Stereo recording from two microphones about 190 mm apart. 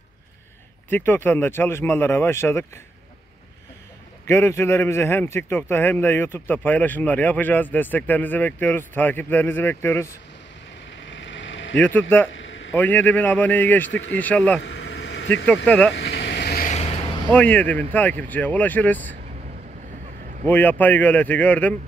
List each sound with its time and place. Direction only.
0.8 s a man's voice: 10° left (ahead or behind)
4.3 s a man's voice: 15° left (ahead or behind)
11.1 s vehicle: 75° left (ahead or behind)
12.3 s a sound: 85° left
12.7 s a man's voice: 10° left (ahead or behind)
14.6 s vehicle: 65° left (ahead or behind)
15.4 s speech: 5° left (ahead or behind)
15.9 s vehicle: 60° left (ahead or behind)
16.6 s vehicle: 35° left (ahead or behind)
17.3 s a man's voice: 10° left (ahead or behind)
20.4 s a man's voice: 10° left (ahead or behind)